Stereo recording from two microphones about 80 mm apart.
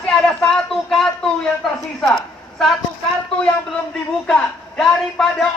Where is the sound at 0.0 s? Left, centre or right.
Centre.